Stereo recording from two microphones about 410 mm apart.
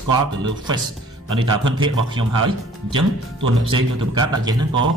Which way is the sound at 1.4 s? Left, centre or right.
Centre.